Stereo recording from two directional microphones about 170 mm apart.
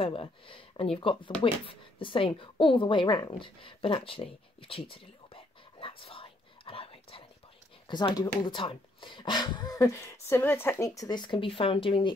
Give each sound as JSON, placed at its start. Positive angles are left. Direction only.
{"t": 0.0, "sound": "a woman's voice", "side_deg": 30}